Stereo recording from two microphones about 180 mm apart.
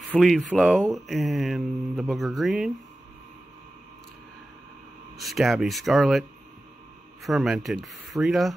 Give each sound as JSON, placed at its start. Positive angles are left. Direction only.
{"t": 0.1, "sound": "speech", "side_deg": 0}
{"t": 5.1, "sound": "speech", "side_deg": 0}
{"t": 7.2, "sound": "speech", "side_deg": 0}